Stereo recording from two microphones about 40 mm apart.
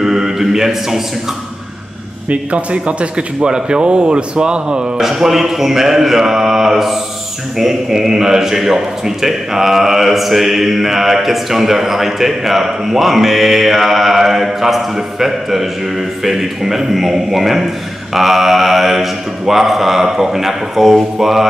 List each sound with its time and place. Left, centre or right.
0.0 s speech: centre
2.2 s a man's voice: right
4.9 s a man's voice: centre